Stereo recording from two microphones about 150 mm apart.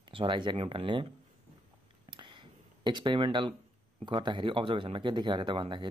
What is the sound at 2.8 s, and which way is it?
Speech, 30° right (ahead or behind).